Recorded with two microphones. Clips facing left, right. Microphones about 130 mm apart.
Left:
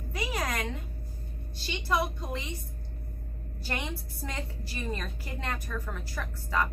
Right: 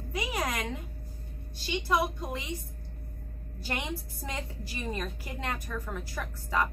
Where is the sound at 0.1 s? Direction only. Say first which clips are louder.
Right 1 dB; 15° right (ahead or behind).